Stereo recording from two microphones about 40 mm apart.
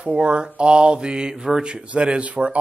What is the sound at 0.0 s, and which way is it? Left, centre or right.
A man's voice, right.